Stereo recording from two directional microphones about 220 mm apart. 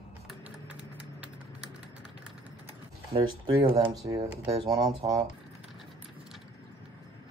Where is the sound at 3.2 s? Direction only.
20° right (ahead or behind).